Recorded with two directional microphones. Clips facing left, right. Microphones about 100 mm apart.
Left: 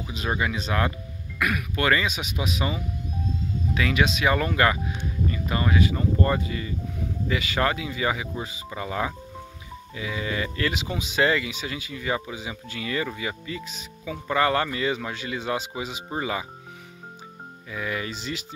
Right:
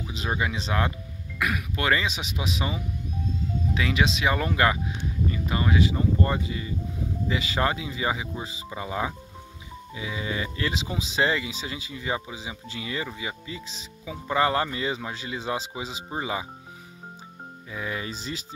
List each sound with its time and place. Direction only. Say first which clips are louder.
0.3 s speech: left 1 dB; 20° right (ahead or behind)
17.6 s speech: left 2 dB; 25° right (ahead or behind)